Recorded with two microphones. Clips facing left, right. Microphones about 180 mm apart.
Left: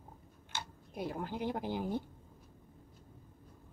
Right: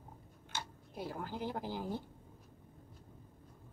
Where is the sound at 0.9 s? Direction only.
20° left (ahead or behind).